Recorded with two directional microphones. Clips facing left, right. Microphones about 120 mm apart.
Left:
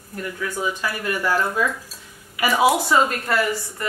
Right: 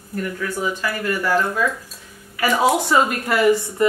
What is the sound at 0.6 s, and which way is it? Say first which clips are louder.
A woman's voice: right 2 dB; 15° left (ahead or behind).